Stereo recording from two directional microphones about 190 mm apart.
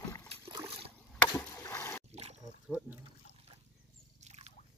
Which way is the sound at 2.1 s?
35° right (ahead or behind).